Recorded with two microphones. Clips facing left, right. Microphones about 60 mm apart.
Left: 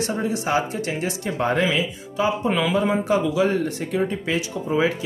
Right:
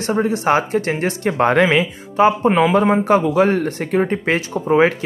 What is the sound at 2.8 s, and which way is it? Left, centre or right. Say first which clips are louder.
Speech: right 6 dB; right.